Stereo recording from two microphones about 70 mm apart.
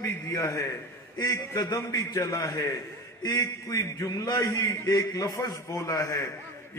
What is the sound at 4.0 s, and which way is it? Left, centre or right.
A man's voice, left.